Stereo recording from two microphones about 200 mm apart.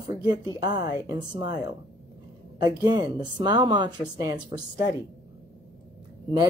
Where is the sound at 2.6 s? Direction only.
20° right (ahead or behind).